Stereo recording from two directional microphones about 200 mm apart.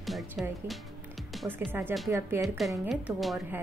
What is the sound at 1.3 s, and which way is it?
Music, centre (ahead or behind).